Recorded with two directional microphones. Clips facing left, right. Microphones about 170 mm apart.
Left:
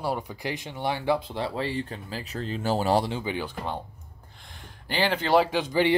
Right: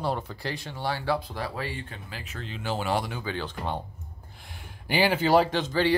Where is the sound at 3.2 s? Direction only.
15° left (ahead or behind).